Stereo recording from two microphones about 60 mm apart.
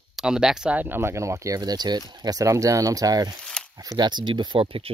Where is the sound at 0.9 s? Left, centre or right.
Right.